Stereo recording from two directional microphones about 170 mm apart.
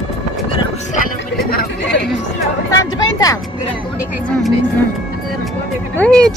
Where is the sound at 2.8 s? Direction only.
20° left (ahead or behind).